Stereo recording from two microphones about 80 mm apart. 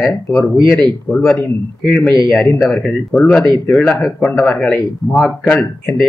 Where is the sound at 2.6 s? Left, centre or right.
Centre.